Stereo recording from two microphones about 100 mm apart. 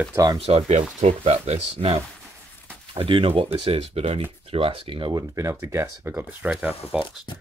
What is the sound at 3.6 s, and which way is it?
Speech, 85° right.